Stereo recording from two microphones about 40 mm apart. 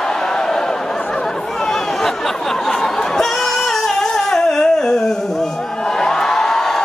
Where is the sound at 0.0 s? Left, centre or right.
Centre.